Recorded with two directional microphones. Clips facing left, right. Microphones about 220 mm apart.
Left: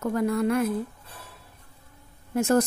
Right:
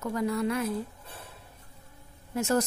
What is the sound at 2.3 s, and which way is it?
Speech, 50° left (ahead or behind).